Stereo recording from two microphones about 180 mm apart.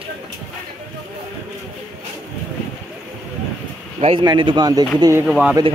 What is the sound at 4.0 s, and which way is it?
Speech, 30° right (ahead or behind).